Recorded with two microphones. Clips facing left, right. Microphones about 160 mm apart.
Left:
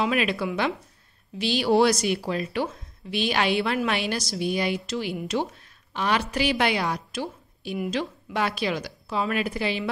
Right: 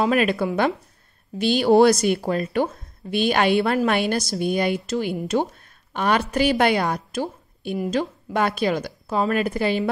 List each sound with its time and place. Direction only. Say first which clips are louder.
0.0 s a woman's voice: right 5 dB; 45° right (ahead or behind)